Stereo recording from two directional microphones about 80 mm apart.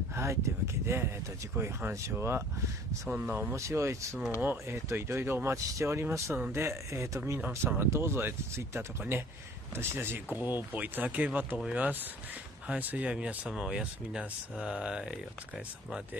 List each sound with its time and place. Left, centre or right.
0.1 s speech: right
3.5 s speech: right
7.3 s speech: right